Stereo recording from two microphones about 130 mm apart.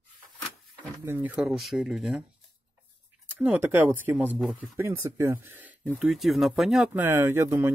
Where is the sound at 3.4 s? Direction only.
15° right (ahead or behind).